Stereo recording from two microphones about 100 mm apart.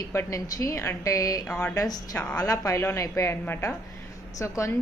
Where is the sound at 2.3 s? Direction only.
35° left (ahead or behind).